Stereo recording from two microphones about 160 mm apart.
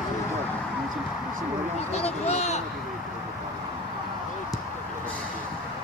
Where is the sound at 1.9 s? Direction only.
40° left (ahead or behind).